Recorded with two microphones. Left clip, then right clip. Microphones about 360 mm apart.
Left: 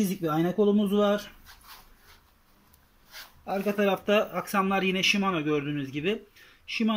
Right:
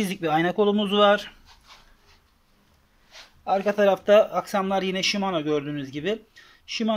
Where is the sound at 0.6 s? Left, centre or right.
Right.